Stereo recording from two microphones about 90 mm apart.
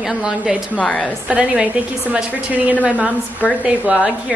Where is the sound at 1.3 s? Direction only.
10° right (ahead or behind).